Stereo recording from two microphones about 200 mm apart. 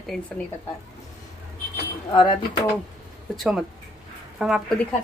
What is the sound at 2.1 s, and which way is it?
Speech, 25° left (ahead or behind).